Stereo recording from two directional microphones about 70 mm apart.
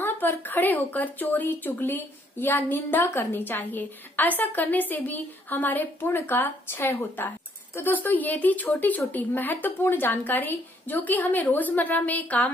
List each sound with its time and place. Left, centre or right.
0.0 s a woman's voice: left